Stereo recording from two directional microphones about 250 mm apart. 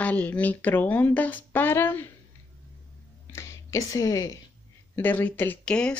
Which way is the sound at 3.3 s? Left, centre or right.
Centre.